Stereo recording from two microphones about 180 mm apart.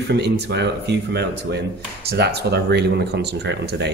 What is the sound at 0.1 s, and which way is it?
Speech, 70° right (ahead or behind).